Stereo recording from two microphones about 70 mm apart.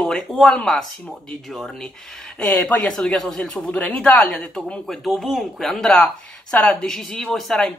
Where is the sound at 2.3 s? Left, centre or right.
Centre.